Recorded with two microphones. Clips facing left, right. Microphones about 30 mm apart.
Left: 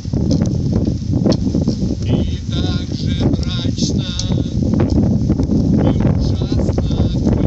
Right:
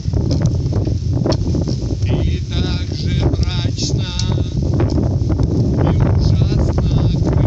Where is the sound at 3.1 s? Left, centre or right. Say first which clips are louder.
Left 3 dB; centre.